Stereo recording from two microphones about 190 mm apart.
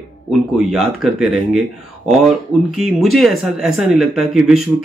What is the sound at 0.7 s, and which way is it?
Speech, centre (ahead or behind).